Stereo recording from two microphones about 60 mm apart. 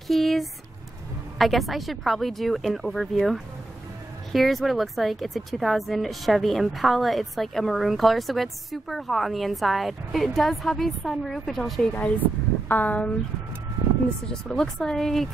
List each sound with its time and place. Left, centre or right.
0.1 s a woman's voice: centre
11.9 s speech: left
14.3 s speech: centre